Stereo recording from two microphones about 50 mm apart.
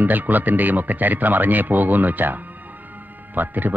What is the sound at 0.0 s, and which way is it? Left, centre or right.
Speech, right.